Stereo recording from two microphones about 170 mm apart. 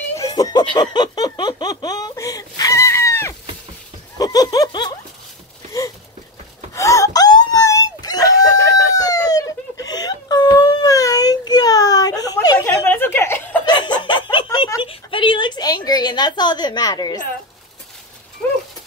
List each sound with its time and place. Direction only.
0.2 s laughter: 20° left (ahead or behind)
4.2 s chuckle: 20° left (ahead or behind)
6.7 s wail: 20° left (ahead or behind)
13.8 s snicker: 25° left (ahead or behind)